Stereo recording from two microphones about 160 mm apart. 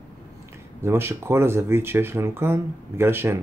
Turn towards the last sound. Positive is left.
turn(degrees=-15)  # may be behind; listen again after turning